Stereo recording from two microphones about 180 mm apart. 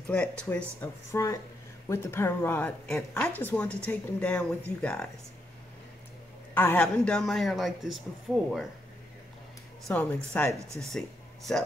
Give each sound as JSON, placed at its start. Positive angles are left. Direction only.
{"t": 0.1, "sound": "speech", "side_deg": 5}
{"t": 6.5, "sound": "speech", "side_deg": 10}
{"t": 9.8, "sound": "speech", "side_deg": 5}